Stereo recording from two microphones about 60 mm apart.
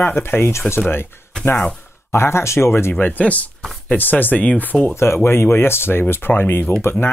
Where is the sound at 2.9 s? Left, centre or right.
Left.